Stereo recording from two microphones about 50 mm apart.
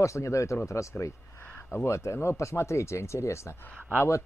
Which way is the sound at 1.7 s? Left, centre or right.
Left.